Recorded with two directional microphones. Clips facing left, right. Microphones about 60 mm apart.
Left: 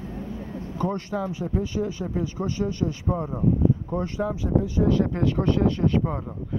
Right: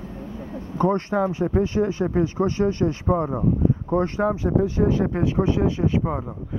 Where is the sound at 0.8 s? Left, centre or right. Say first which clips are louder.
Right 7 dB; right.